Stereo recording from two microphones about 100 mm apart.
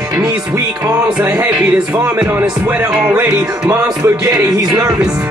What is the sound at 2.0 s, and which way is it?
Music, 15° right (ahead or behind).